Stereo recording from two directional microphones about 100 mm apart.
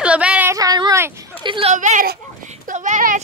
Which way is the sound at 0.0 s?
10° right (ahead or behind).